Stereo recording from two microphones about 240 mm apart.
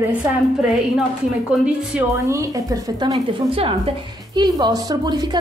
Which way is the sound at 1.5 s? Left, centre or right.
Centre.